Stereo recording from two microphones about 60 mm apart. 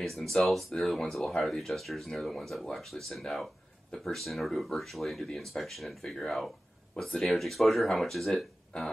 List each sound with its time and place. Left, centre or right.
0.0 s speech: centre